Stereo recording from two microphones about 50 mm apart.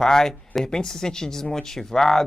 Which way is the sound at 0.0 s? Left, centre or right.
Centre.